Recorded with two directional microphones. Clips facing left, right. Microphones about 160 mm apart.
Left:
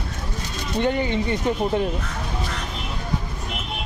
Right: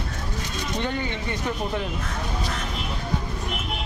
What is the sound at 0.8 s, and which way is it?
Speech, 20° left (ahead or behind).